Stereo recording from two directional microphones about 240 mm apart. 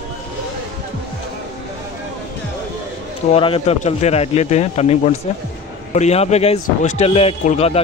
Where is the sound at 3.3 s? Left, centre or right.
Left.